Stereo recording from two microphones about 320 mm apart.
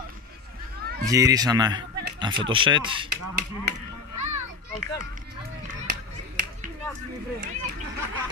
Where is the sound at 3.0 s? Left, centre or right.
Right.